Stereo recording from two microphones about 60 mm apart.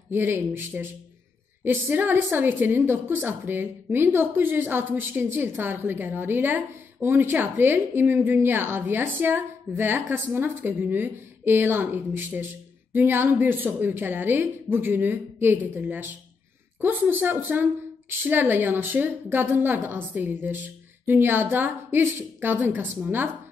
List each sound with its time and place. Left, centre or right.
0.1 s a woman's voice: right
19.2 s a woman's voice: right